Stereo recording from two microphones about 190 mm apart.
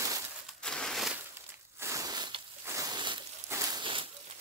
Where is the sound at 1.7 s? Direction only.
15° right (ahead or behind).